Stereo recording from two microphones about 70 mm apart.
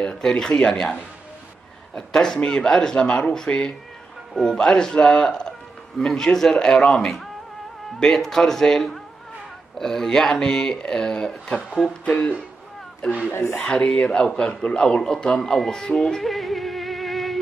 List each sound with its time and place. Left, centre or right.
0.0 s speech: centre
2.0 s a man's voice: centre
13.3 s speech: left
13.7 s a man's voice: centre